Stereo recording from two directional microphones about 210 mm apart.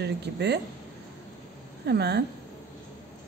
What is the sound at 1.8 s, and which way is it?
Speech, 50° right (ahead or behind).